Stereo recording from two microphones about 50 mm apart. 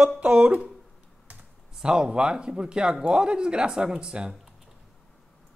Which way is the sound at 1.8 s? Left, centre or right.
Centre.